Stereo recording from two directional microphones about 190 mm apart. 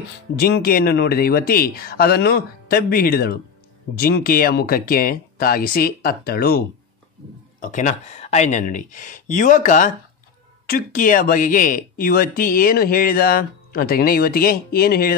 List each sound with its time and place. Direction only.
0.4 s speech: 55° left (ahead or behind)
7.6 s speech: 40° left (ahead or behind)